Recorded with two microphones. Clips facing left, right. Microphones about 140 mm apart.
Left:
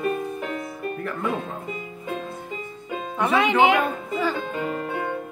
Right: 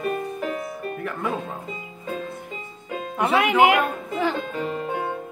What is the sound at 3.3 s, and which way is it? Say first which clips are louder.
Speech: right 1 dB; 10° right (ahead or behind).